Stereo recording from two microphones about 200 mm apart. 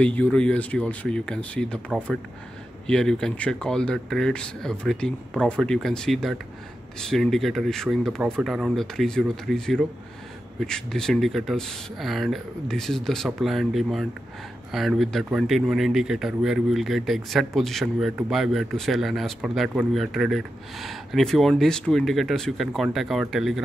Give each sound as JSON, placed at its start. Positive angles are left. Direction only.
{"t": 0.0, "sound": "speech", "side_deg": 5}
{"t": 2.9, "sound": "speech", "side_deg": 5}